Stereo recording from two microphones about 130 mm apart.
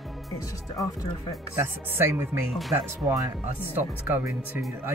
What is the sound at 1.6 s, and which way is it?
Speech, 20° right (ahead or behind).